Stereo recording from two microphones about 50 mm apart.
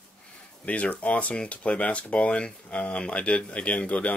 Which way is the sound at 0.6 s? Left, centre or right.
Left.